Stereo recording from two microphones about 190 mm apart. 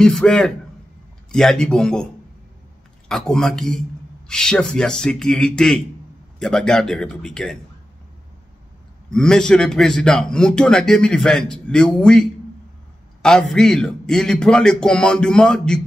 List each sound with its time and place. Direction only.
0.0 s a man's voice: 5° left (ahead or behind)
3.1 s a man's voice: centre (ahead or behind)
9.1 s a man's voice: 5° left (ahead or behind)